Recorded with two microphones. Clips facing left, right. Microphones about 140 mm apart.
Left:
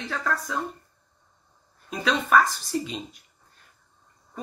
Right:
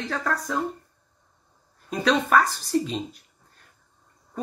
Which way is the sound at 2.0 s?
40° right (ahead or behind).